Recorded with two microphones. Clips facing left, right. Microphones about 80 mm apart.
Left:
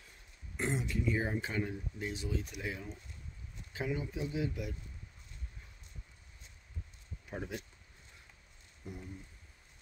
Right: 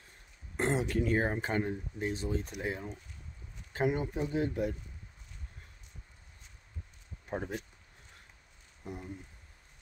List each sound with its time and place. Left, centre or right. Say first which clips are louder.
0.6 s speech: right 5 dB; right
3.7 s speech: right 6 dB; right
7.2 s speech: right 5 dB; right
8.8 s speech: right 4 dB; right